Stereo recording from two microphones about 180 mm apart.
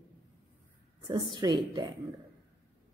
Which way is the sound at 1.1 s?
25° right (ahead or behind).